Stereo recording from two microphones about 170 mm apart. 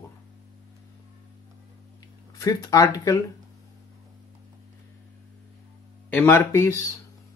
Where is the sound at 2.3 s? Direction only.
20° left (ahead or behind).